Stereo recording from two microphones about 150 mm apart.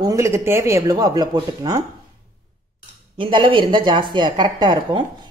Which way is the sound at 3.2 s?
35° right (ahead or behind).